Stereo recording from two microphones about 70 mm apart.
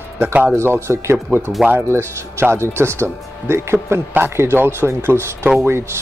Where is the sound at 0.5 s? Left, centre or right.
Right.